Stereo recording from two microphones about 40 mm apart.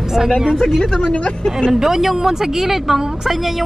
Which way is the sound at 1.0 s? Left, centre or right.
Centre.